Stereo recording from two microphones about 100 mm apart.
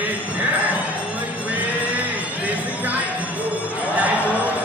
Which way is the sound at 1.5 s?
15° right (ahead or behind).